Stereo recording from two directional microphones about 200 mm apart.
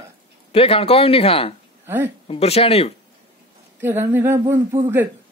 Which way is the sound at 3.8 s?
10° right (ahead or behind).